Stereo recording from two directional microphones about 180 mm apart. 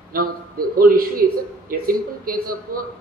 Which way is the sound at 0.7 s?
55° right (ahead or behind).